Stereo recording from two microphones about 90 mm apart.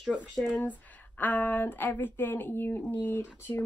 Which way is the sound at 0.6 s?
20° left (ahead or behind).